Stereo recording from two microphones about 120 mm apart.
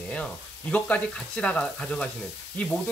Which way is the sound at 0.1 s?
10° left (ahead or behind).